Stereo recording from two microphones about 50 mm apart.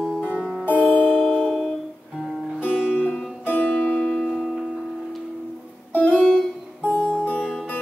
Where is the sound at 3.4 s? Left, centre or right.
Left.